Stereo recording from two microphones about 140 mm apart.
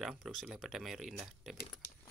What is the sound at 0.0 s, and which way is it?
Speech, centre (ahead or behind).